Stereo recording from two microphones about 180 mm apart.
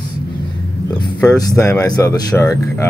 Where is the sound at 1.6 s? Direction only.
15° left (ahead or behind).